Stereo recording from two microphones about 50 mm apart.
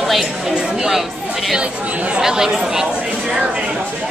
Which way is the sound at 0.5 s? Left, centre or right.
Centre.